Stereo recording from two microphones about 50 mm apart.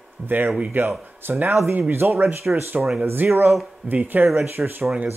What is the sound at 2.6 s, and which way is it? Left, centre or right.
Speech, right.